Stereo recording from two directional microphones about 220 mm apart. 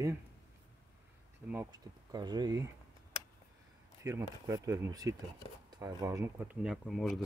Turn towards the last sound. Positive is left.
turn(degrees=0)  # may be behind; listen again after turning